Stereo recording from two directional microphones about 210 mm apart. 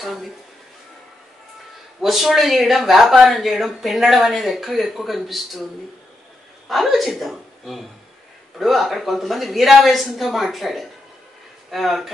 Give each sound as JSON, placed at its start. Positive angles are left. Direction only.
{"t": 0.0, "sound": "speech", "side_deg": 0}
{"t": 2.0, "sound": "speech", "side_deg": 0}
{"t": 6.7, "sound": "a woman's voice", "side_deg": 0}